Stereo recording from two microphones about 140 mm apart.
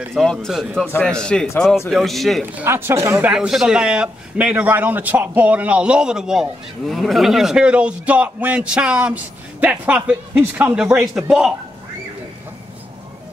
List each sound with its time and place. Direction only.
0.1 s speech: 5° left (ahead or behind)
2.4 s a man's voice: 15° right (ahead or behind)
3.3 s a man's voice: 5° right (ahead or behind)